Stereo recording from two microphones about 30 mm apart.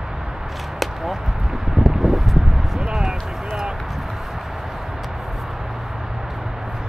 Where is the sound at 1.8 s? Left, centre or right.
Right.